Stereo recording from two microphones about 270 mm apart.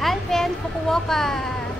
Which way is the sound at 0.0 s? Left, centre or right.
Centre.